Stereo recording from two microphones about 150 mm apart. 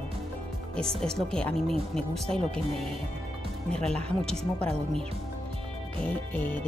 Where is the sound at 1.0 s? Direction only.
5° left (ahead or behind).